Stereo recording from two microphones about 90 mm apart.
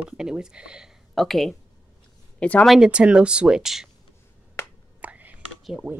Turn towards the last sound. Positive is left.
turn(degrees=-15)  # may be behind; listen again after turning